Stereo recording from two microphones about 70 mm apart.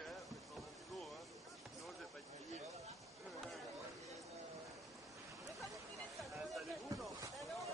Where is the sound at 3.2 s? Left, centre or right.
Centre.